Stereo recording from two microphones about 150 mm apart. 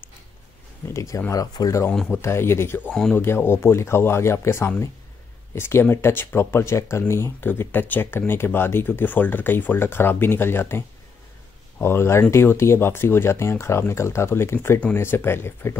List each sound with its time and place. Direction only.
0.8 s speech: 20° left (ahead or behind)
1.9 s speech: 5° left (ahead or behind)
2.2 s speech: 15° left (ahead or behind)
11.8 s speech: 15° left (ahead or behind)